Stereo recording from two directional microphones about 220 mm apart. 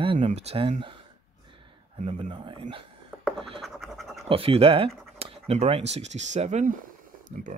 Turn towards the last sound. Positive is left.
turn(degrees=-35)  # may be behind; listen again after turning